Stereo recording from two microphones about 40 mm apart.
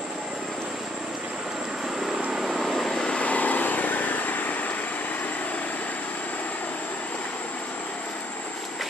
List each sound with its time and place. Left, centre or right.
2.3 s vehicle: centre
2.6 s vehicle: centre
3.2 s vehicle: left